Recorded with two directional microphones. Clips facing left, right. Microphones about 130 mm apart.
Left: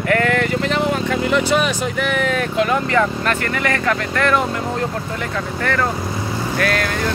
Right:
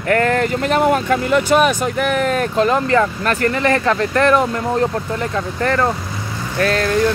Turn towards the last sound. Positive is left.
turn(degrees=-30)  # may be behind; listen again after turning